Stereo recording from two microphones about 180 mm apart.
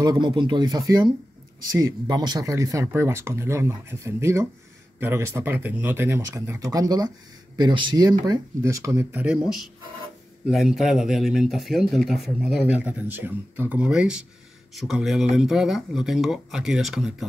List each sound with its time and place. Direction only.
0.0 s speech: 25° right (ahead or behind); by 17.1 s centre (ahead or behind)